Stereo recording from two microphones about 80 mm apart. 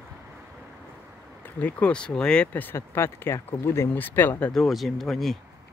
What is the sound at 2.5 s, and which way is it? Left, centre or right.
Speech, left.